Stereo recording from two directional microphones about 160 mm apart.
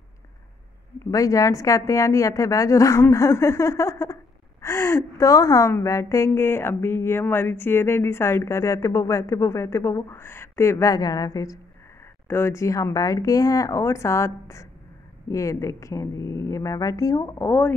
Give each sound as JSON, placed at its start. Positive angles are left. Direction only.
{"t": 1.1, "sound": "a woman's voice", "side_deg": 20}